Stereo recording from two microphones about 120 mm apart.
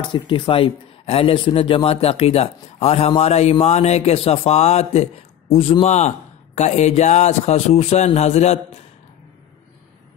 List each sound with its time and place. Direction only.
0.0 s a man's voice: 40° left (ahead or behind); by 8.5 s 65° left (ahead or behind)